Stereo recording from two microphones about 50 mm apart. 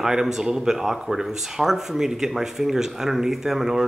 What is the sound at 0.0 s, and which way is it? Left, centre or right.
Speech, centre.